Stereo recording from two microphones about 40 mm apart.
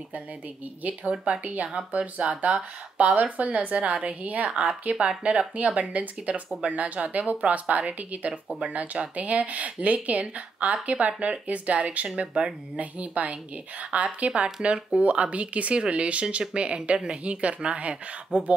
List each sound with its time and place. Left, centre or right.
1.2 s speech: right
5.8 s speech: right